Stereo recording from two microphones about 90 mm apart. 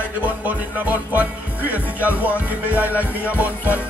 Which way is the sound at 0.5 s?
15° right (ahead or behind).